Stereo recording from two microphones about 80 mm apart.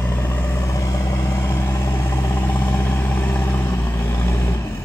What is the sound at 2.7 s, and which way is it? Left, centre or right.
Vehicle, left.